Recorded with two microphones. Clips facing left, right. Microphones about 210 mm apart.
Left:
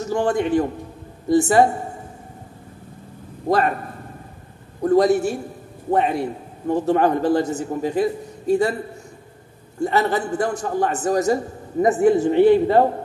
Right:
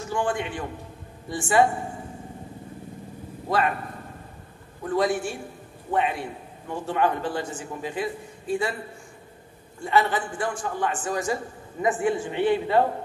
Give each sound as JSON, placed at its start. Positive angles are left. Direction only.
{"t": 0.0, "sound": "a man's voice", "side_deg": 40}
{"t": 3.4, "sound": "a man's voice", "side_deg": 40}
{"t": 4.8, "sound": "a man's voice", "side_deg": 40}
{"t": 9.8, "sound": "a man's voice", "side_deg": 40}